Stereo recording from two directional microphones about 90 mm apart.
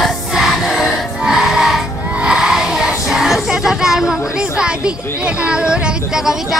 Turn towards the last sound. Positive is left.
turn(degrees=-10)  # may be behind; listen again after turning